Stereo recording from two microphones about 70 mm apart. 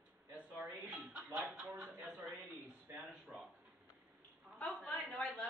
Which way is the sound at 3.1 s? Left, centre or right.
Centre.